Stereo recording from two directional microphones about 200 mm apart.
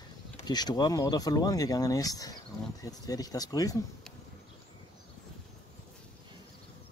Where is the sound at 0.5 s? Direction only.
20° left (ahead or behind).